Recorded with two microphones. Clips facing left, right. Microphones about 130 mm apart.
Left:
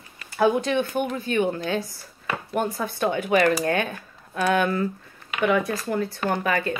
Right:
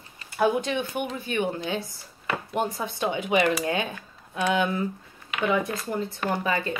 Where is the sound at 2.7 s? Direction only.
20° right (ahead or behind).